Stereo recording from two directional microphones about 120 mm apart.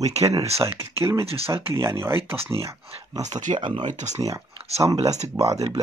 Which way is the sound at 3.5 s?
45° right (ahead or behind).